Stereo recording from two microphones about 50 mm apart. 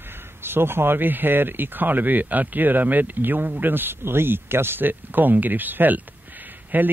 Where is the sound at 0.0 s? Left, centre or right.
Right.